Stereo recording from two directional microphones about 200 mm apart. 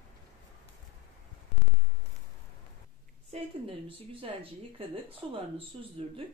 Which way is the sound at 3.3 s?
35° right (ahead or behind).